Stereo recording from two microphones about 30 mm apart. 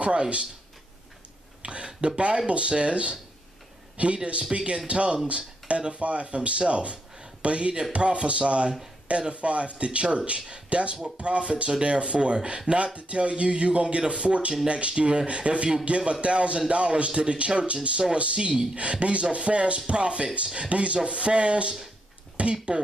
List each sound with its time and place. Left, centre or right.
0.0 s speech: right
1.6 s a sound: right
2.0 s speech: right